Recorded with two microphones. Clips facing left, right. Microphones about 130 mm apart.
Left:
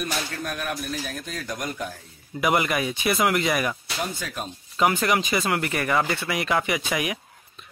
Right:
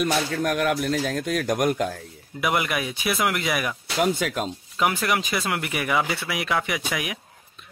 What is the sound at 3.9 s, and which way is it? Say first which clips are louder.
Speech: right 8 dB; 80° right.